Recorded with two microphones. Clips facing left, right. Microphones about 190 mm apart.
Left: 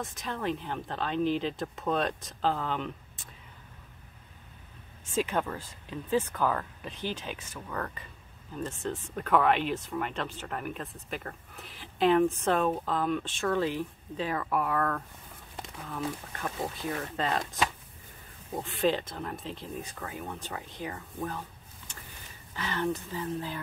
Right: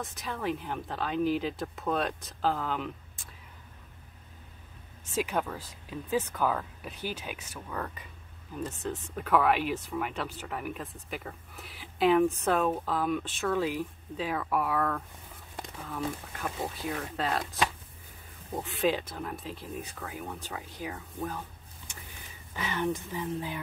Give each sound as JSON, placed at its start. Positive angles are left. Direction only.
{"t": 0.0, "sound": "speech", "side_deg": 0}
{"t": 5.1, "sound": "speech", "side_deg": -5}